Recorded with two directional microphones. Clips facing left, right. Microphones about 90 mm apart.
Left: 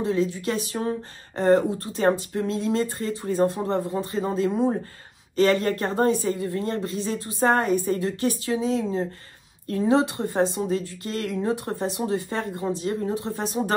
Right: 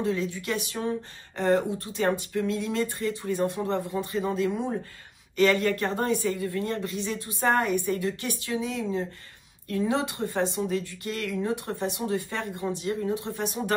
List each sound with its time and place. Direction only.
0.0 s a woman's voice: 25° left (ahead or behind)